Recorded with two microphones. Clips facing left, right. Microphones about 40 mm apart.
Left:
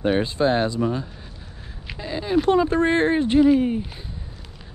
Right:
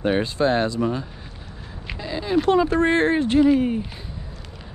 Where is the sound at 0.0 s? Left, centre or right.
Right.